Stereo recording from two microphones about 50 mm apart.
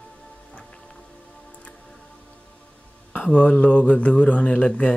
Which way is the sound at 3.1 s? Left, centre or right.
Left.